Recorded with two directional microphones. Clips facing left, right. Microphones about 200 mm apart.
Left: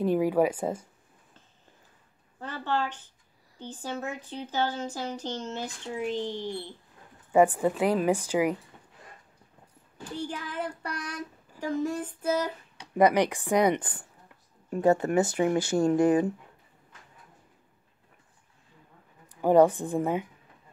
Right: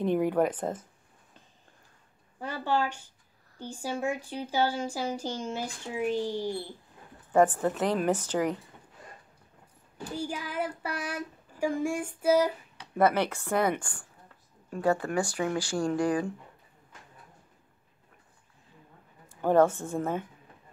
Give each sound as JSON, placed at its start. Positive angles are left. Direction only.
{"t": 0.0, "sound": "a woman's voice", "side_deg": 5}
{"t": 2.4, "sound": "speech", "side_deg": -10}
{"t": 7.3, "sound": "a woman's voice", "side_deg": 10}
{"t": 10.1, "sound": "speech", "side_deg": -10}
{"t": 12.9, "sound": "a woman's voice", "side_deg": 15}
{"t": 19.2, "sound": "a woman's voice", "side_deg": 15}